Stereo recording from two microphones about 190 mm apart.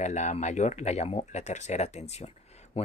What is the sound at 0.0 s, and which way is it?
Speech, 35° left (ahead or behind).